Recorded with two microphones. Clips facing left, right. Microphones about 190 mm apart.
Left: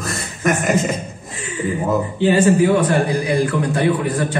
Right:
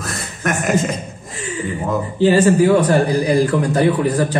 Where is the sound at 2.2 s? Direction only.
40° right (ahead or behind).